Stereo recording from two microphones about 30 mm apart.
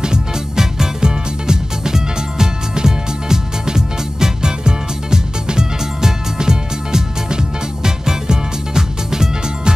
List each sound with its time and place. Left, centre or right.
0.0 s music: right